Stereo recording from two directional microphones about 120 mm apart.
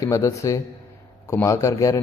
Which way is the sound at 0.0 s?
25° left (ahead or behind).